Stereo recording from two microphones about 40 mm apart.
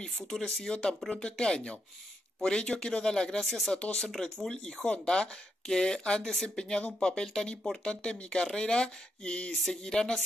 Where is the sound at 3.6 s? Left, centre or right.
Left.